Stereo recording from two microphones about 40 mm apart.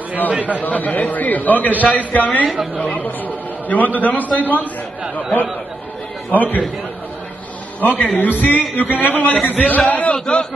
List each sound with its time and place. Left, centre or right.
0.3 s a man's voice: right
0.6 s a man's voice: left
2.5 s a woman's voice: centre
3.0 s a man's voice: left
7.8 s a man's voice: left
10.1 s speech: centre